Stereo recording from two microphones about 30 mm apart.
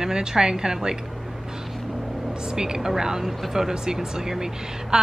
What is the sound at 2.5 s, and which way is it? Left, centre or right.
A woman's voice, right.